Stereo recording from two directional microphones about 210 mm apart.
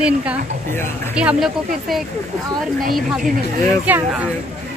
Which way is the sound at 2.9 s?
Centre (ahead or behind).